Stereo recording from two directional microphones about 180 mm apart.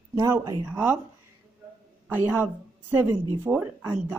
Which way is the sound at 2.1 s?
10° right (ahead or behind).